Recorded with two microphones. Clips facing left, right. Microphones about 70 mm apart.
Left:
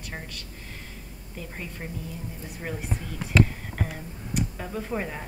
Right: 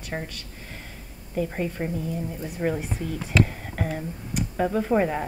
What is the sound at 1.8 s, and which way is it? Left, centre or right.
Speech, centre.